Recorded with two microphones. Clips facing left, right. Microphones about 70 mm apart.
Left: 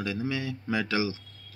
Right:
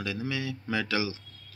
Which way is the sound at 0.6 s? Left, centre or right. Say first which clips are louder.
Left 1 dB; centre.